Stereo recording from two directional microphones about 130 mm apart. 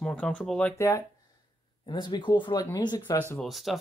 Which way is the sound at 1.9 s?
35° left (ahead or behind).